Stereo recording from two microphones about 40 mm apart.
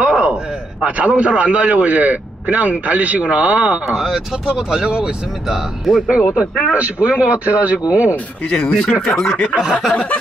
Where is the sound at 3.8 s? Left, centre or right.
Centre.